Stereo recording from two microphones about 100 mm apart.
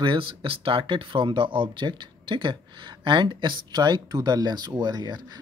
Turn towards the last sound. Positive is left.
turn(degrees=-45)  # may be behind; listen again after turning